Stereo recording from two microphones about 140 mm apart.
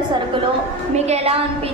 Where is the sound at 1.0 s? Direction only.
45° right (ahead or behind).